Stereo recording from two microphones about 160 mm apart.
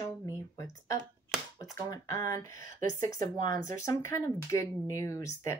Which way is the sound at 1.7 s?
20° left (ahead or behind).